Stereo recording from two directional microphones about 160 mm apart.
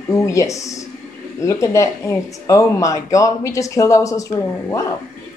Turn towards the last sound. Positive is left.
turn(degrees=20)  # may be behind; listen again after turning